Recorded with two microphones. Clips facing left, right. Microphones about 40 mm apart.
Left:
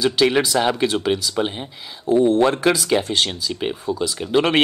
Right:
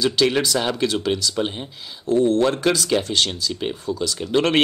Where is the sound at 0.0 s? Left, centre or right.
Centre.